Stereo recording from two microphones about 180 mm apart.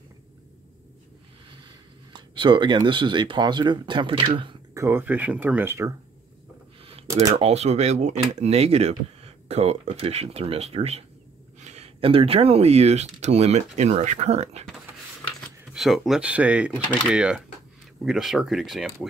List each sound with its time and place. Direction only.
2.1 s speech: 25° right (ahead or behind)
4.8 s speech: 10° right (ahead or behind)
7.3 s speech: 35° right (ahead or behind)
15.7 s speech: centre (ahead or behind)